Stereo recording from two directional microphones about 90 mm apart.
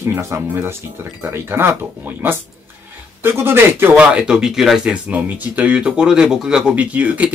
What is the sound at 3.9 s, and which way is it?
Speech, 10° right (ahead or behind).